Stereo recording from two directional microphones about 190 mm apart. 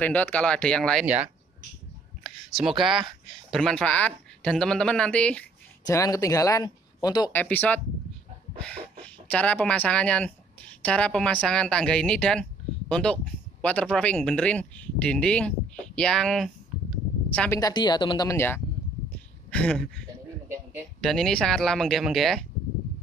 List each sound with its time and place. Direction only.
0.0 s speech: 10° left (ahead or behind)
2.6 s speech: centre (ahead or behind)
5.9 s speech: 15° left (ahead or behind)
7.3 s speech: 10° left (ahead or behind)
17.6 s speech: 20° left (ahead or behind)
21.0 s speech: centre (ahead or behind)